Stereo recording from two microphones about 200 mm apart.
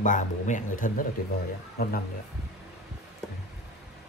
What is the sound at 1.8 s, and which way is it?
Speech, 50° left (ahead or behind).